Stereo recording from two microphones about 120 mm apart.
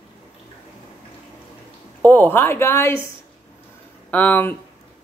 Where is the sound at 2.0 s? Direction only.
15° left (ahead or behind).